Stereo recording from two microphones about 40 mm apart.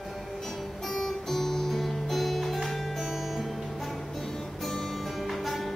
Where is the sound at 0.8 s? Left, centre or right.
Centre.